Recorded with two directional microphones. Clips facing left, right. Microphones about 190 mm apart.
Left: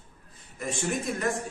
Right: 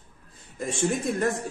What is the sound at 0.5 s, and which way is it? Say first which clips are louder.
Speech: right 4 dB; 30° right (ahead or behind).